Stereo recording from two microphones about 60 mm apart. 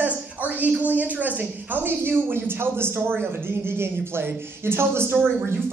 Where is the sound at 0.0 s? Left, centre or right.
Right.